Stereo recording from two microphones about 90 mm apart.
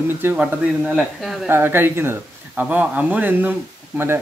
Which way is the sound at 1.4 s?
25° right (ahead or behind).